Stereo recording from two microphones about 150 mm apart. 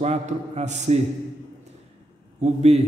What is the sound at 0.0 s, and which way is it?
Speech, 45° right (ahead or behind).